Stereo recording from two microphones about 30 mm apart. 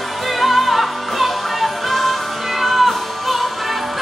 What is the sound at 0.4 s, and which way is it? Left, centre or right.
Music, centre.